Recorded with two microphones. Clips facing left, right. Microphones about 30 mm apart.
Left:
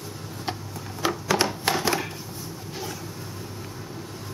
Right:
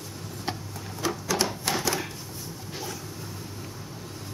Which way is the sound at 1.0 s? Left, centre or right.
Left.